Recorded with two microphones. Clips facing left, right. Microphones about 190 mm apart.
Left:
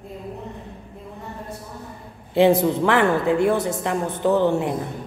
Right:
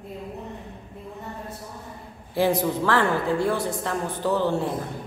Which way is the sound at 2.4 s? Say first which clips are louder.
Left 6 dB; 25° left (ahead or behind).